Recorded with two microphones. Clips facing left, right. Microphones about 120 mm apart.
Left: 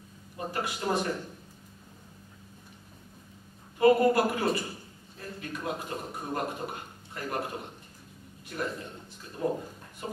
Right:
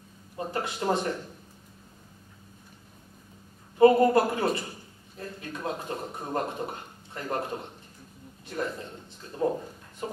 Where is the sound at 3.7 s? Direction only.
25° right (ahead or behind).